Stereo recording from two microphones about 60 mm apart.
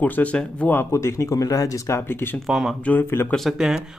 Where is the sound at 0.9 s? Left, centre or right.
Left.